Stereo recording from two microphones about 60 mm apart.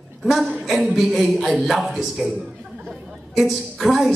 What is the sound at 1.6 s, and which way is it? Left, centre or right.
Speech, centre.